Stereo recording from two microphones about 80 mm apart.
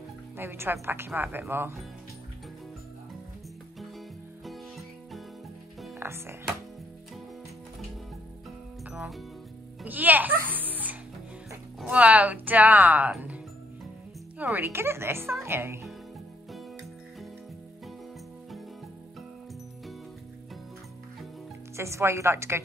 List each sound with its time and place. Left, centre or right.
0.4 s speech: right
4.5 s music: centre
5.9 s music: right
8.9 s music: centre
9.8 s a child's voice: right
14.4 s speech: right
21.7 s speech: right